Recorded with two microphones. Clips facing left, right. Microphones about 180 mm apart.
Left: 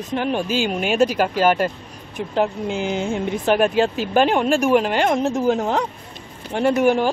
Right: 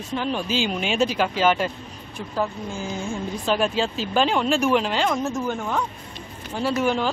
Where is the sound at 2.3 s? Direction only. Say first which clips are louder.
Left 6 dB; 70° left (ahead or behind).